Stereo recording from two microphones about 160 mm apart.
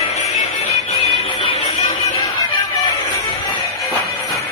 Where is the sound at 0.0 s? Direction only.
45° left (ahead or behind).